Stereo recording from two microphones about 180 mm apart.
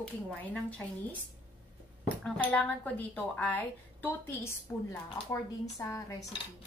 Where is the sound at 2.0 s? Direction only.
5° left (ahead or behind).